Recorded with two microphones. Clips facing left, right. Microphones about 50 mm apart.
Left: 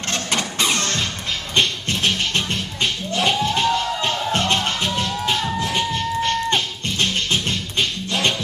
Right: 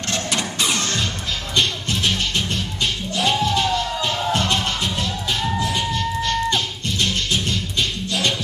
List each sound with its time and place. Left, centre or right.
1.5 s music: left